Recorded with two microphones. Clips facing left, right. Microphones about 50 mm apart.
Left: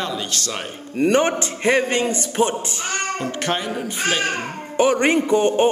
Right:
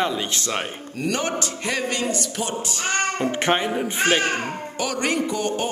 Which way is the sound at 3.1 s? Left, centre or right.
Right.